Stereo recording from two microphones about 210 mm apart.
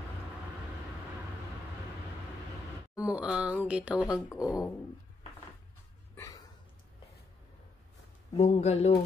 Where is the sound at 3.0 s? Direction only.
5° right (ahead or behind).